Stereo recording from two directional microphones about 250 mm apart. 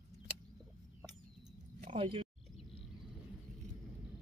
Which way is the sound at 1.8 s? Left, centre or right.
Right.